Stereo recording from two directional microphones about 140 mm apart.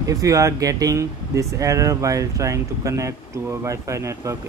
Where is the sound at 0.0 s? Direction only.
25° right (ahead or behind).